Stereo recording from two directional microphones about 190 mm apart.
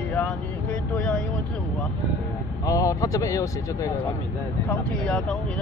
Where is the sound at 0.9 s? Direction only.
5° left (ahead or behind).